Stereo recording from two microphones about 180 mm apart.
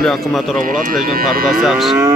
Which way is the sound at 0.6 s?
50° right (ahead or behind).